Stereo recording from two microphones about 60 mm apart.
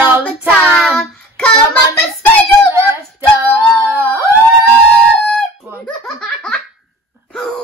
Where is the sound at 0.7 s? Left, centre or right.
Centre.